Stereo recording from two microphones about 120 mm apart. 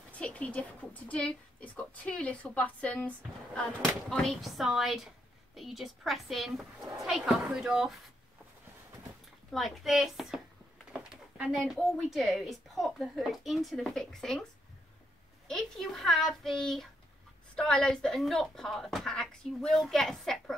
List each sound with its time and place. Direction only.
0.1 s a woman's voice: 10° left (ahead or behind)
9.5 s speech: centre (ahead or behind)
15.4 s speech: 5° left (ahead or behind)